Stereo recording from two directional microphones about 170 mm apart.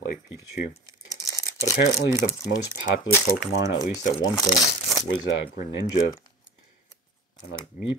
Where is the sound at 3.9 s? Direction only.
25° left (ahead or behind).